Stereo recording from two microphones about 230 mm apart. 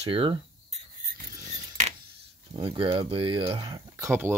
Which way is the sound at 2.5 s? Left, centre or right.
Right.